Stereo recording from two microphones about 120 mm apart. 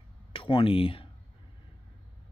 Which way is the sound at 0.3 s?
50° left (ahead or behind).